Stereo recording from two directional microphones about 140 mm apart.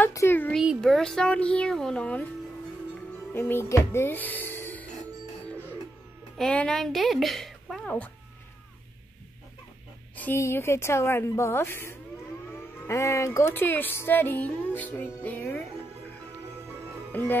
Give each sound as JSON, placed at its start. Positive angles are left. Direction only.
{"t": 0.1, "sound": "speech", "side_deg": 20}
{"t": 0.6, "sound": "speech", "side_deg": 0}
{"t": 3.3, "sound": "speech", "side_deg": 15}
{"t": 6.3, "sound": "a woman's voice", "side_deg": 5}
{"t": 10.1, "sound": "speech", "side_deg": 15}
{"t": 17.1, "sound": "speech", "side_deg": 15}